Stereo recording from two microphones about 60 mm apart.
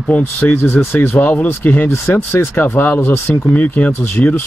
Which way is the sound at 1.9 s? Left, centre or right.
Left.